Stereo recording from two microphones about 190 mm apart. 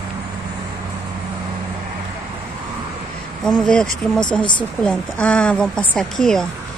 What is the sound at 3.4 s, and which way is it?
Speech, 5° left (ahead or behind).